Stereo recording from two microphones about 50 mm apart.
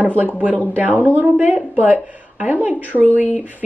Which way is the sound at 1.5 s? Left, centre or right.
Right.